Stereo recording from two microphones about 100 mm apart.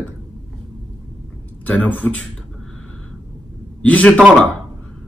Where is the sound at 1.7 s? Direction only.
15° left (ahead or behind).